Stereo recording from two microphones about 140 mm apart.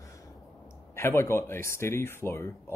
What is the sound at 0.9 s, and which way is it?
Speech, 20° left (ahead or behind).